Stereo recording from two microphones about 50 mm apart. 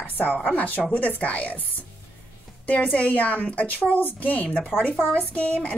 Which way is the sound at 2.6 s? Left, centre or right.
Left.